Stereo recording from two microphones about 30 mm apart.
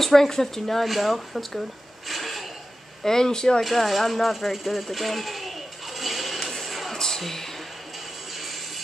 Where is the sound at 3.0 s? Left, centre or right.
Centre.